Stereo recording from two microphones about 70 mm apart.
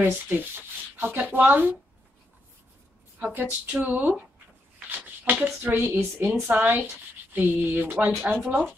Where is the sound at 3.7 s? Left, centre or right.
Right.